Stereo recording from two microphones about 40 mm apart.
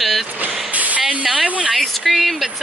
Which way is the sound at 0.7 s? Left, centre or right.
Right.